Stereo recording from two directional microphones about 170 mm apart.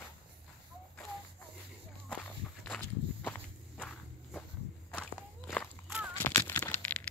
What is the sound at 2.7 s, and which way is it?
Walk, 10° left (ahead or behind).